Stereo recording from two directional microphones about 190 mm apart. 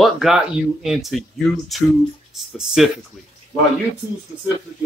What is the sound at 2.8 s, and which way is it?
Speech, centre (ahead or behind).